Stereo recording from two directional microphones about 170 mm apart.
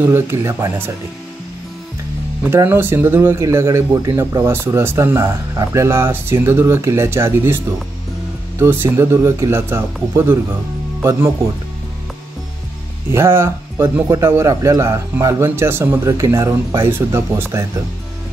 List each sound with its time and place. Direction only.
0.0 s speech: 15° right (ahead or behind)
2.5 s speech: 15° right (ahead or behind)
13.1 s speech: 15° right (ahead or behind)